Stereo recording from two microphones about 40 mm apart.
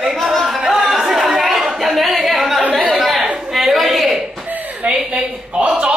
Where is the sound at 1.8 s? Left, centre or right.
Centre.